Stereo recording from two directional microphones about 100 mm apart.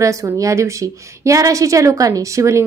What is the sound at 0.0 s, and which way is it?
A woman's voice, 30° right (ahead or behind).